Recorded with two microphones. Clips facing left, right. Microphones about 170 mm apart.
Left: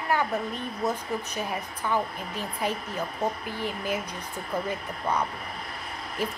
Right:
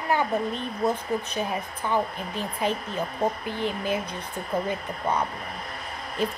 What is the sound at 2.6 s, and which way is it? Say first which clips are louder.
Speech: right 3 dB; 20° right (ahead or behind).